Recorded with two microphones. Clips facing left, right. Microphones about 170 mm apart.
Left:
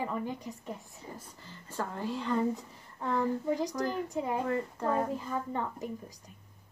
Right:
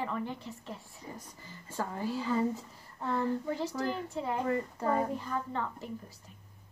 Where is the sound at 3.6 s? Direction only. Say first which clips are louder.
Left 2 dB; 15° left (ahead or behind).